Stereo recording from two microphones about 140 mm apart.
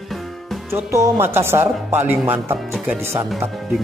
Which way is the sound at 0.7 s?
20° right (ahead or behind).